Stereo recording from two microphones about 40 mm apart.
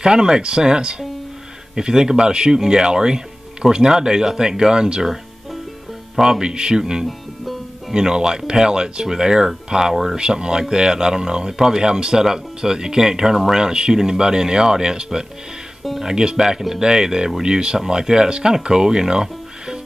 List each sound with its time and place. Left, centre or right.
0.0 s speech: right
5.0 s music: centre
6.1 s speech: centre
15.8 s speech: centre
16.1 s speech: centre